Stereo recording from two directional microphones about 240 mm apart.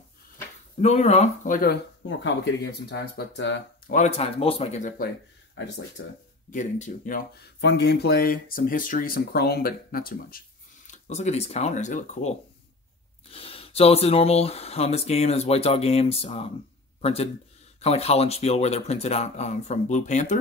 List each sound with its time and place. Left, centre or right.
0.7 s speech: left
3.9 s speech: left
6.5 s speech: left